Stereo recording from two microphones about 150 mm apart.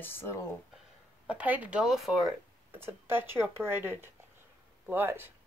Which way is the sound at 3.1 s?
15° right (ahead or behind).